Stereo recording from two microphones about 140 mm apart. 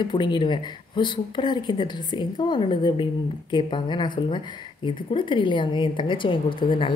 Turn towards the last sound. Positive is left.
turn(degrees=35)  # may be behind; listen again after turning